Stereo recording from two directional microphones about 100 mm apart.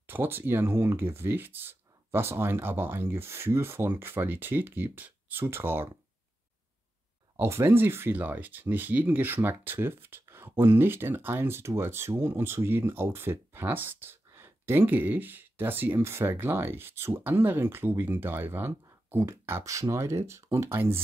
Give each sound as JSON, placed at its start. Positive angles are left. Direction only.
{"t": 0.0, "sound": "speech", "side_deg": -20}
{"t": 7.3, "sound": "speech", "side_deg": -25}